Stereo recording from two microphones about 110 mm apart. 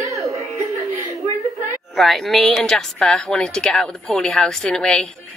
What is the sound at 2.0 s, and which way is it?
A woman's voice, centre (ahead or behind).